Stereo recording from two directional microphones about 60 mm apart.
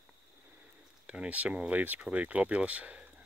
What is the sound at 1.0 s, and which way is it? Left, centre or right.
Speech, right.